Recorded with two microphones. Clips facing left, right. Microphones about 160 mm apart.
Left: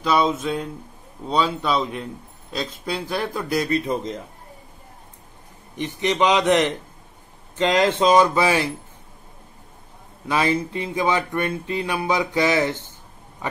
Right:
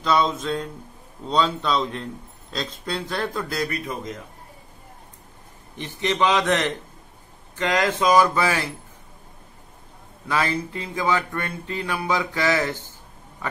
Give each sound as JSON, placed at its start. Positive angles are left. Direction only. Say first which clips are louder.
{"t": 0.0, "sound": "speech", "louder": "left 1 dB", "side_deg": 10}
{"t": 5.8, "sound": "speech", "louder": "left 2 dB", "side_deg": 15}
{"t": 10.2, "sound": "speech", "louder": "left 3 dB", "side_deg": 20}